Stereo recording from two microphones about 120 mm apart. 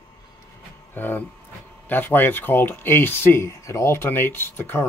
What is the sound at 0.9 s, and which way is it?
Speech, 15° left (ahead or behind).